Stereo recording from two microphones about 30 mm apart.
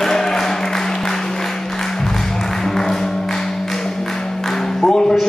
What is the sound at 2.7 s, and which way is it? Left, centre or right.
Music, centre.